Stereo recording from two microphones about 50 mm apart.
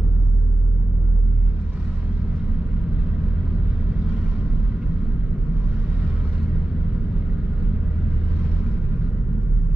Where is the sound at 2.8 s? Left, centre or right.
Centre.